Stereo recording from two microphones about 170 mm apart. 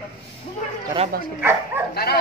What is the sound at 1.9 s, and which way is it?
Speech, 65° left (ahead or behind).